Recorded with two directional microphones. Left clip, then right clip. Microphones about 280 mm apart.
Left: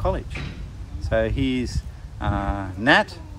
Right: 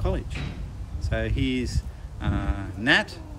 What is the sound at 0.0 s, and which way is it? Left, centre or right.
Speech, centre.